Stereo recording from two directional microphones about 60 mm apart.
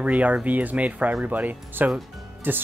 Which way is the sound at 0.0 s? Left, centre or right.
Right.